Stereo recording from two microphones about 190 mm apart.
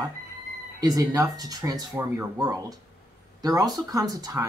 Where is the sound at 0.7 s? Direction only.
20° right (ahead or behind).